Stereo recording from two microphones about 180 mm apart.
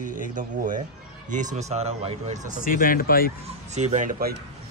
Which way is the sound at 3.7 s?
40° right (ahead or behind).